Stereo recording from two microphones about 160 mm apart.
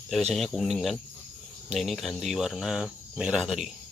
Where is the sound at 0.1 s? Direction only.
Centre (ahead or behind).